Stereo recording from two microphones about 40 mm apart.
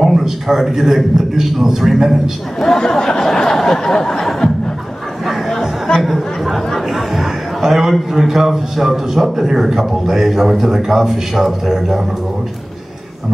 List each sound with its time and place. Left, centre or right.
0.0 s a man's voice: centre
2.6 s a sound: centre
5.2 s chatter: centre
8.1 s a man's voice: centre